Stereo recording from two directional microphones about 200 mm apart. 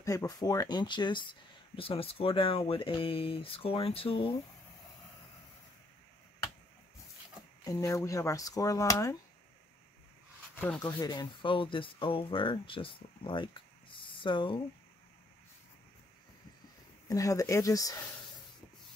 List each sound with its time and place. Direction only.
0.0 s speech: 15° left (ahead or behind)
7.6 s speech: 15° left (ahead or behind)
10.5 s a sound: 5° left (ahead or behind)
10.8 s speech: 20° left (ahead or behind)
17.1 s speech: 15° left (ahead or behind)